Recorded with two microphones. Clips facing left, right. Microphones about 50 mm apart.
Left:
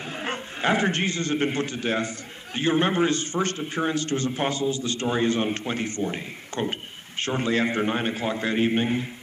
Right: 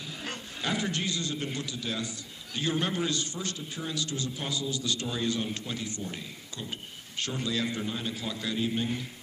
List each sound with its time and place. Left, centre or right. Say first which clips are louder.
0.0 s a man's voice: left 8 dB; left